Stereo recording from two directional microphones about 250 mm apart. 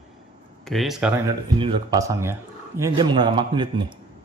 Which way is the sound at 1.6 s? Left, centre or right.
Centre.